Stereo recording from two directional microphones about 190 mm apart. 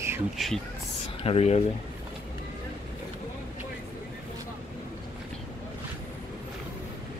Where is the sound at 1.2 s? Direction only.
30° left (ahead or behind).